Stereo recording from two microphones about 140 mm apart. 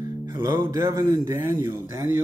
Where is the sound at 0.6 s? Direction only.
20° right (ahead or behind).